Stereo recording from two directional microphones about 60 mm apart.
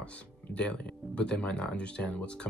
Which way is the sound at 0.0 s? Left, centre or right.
Centre.